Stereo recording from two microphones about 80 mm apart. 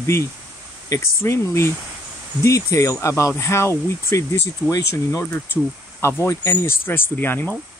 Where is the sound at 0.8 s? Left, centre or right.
Left.